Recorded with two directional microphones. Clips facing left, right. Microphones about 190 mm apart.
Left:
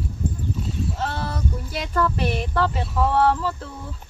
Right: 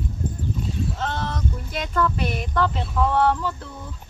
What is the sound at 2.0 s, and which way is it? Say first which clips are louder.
Speech: left 1 dB; 35° left (ahead or behind).